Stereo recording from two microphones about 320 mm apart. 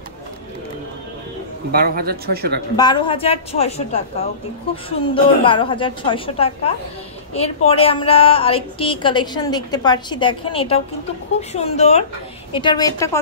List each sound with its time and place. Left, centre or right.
1.7 s speech: right
2.7 s a woman's voice: centre